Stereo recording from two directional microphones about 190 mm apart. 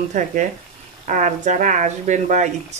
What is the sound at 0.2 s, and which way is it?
Speech, 40° right (ahead or behind).